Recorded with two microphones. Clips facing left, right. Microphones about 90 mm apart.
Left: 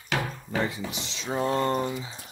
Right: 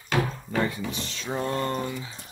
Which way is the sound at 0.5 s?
15° left (ahead or behind).